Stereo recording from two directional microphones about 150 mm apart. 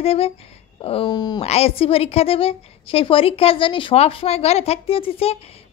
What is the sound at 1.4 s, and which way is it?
A woman's voice, 45° left (ahead or behind).